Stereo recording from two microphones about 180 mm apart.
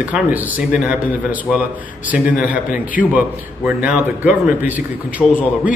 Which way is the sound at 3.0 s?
50° left (ahead or behind).